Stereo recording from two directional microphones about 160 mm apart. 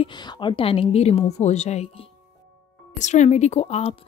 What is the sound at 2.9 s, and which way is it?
Speech, 50° left (ahead or behind).